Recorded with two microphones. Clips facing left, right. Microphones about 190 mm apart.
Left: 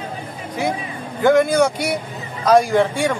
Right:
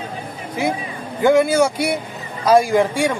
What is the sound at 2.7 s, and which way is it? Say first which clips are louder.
Speech: even; 15° right (ahead or behind).